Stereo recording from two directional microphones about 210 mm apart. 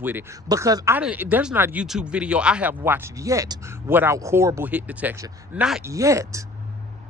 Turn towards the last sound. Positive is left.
turn(degrees=-15)  # may be behind; listen again after turning